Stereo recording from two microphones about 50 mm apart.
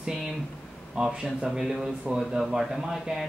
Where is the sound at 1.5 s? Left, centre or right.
Centre.